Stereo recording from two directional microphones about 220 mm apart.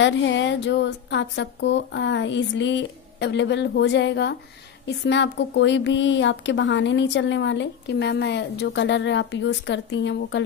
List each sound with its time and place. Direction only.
0.0 s speech: 55° left (ahead or behind)